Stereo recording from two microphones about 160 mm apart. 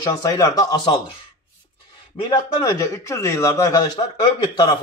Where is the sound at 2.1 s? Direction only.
25° left (ahead or behind).